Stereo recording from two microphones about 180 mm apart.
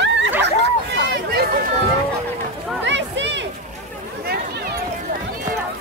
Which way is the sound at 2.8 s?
80° right.